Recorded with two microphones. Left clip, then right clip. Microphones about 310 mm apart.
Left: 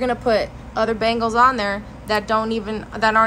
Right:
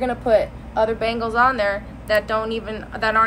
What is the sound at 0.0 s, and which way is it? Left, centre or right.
A woman's voice, left.